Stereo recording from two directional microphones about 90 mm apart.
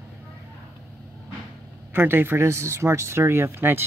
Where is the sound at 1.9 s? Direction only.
25° right (ahead or behind).